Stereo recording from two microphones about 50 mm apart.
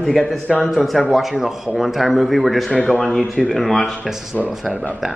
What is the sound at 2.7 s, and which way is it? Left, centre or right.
A man's voice, centre.